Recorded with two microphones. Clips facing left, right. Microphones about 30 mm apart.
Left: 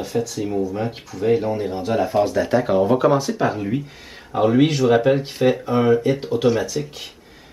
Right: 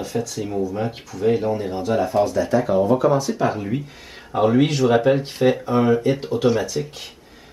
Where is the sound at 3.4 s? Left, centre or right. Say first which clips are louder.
Left 1 dB; centre.